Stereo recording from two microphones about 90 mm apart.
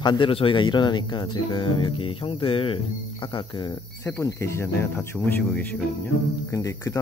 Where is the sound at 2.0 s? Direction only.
85° left.